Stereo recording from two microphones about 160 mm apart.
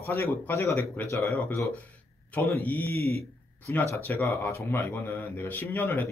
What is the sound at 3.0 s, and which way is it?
Speech, 40° right (ahead or behind).